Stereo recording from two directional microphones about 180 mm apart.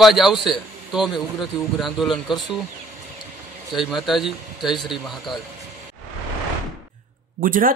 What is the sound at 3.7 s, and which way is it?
A man's voice, centre (ahead or behind).